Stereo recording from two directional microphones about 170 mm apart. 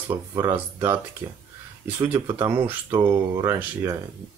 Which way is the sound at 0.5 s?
10° right (ahead or behind).